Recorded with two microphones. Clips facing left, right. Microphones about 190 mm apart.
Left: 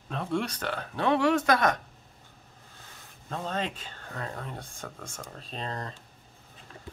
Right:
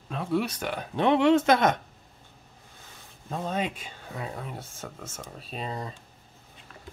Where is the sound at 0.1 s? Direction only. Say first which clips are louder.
Right 3 dB; 5° right (ahead or behind); by 1.8 s 20° right (ahead or behind).